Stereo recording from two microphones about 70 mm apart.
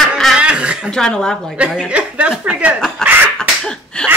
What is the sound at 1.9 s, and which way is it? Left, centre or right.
Speech, centre.